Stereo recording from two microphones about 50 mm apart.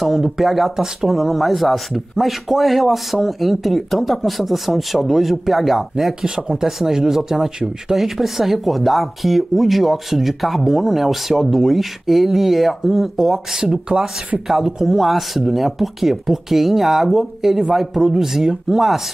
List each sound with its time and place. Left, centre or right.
0.0 s speech: centre
6.2 s speech: centre